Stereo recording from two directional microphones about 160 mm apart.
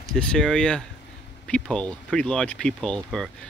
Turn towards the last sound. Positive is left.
turn(degrees=5)  # may be behind; listen again after turning